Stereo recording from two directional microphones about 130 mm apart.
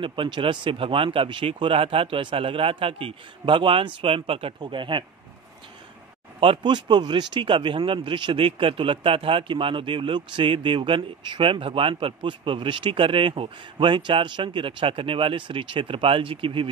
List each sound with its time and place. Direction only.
0.0 s speech: 40° right (ahead or behind)
6.4 s speech: 40° right (ahead or behind)